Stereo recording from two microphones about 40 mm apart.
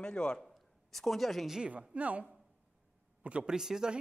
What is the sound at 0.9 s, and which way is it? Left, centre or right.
Speech, centre.